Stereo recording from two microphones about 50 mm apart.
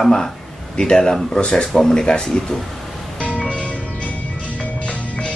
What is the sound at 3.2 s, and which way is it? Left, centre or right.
Music, left.